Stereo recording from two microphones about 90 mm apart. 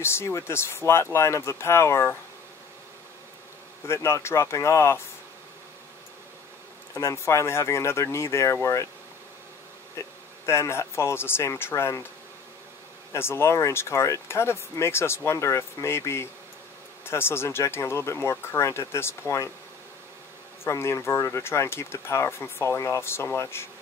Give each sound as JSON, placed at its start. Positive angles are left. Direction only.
{"t": 0.0, "sound": "speech", "side_deg": 30}
{"t": 3.8, "sound": "speech", "side_deg": 30}
{"t": 7.0, "sound": "speech", "side_deg": 30}
{"t": 9.9, "sound": "speech", "side_deg": 30}
{"t": 13.1, "sound": "speech", "side_deg": 30}
{"t": 20.6, "sound": "speech", "side_deg": 30}